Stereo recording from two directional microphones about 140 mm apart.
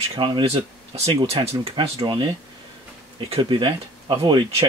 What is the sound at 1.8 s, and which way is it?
Speech, 35° right (ahead or behind).